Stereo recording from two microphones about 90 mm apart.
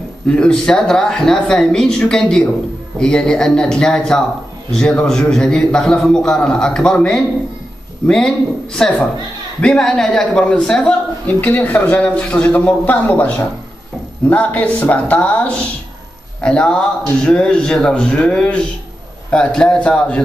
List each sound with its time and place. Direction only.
0.3 s a man's voice: 10° left (ahead or behind)
14.3 s a man's voice: 15° left (ahead or behind)